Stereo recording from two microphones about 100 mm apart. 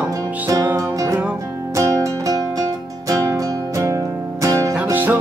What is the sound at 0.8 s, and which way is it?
Music, 35° right (ahead or behind).